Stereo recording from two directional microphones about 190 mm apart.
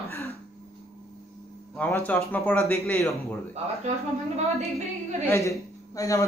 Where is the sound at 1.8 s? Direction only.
10° left (ahead or behind).